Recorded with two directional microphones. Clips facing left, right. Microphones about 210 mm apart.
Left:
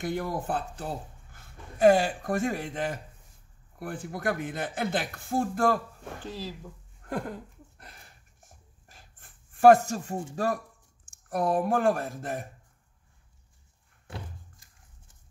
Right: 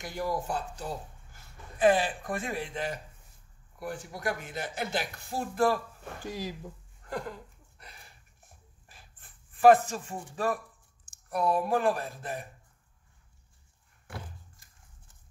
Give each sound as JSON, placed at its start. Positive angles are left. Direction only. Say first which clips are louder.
{"t": 0.0, "sound": "a man's voice", "louder": "left 2 dB", "side_deg": 55}
{"t": 6.2, "sound": "speech", "louder": "right 2 dB", "side_deg": -15}
{"t": 7.1, "sound": "a sound", "louder": "left 3 dB", "side_deg": 55}
{"t": 10.3, "sound": "speech", "louder": "even", "side_deg": 40}